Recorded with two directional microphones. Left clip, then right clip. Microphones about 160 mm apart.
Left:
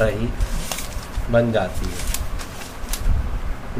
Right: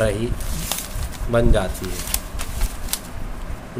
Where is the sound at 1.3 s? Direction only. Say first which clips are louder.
Left 1 dB; 40° right (ahead or behind).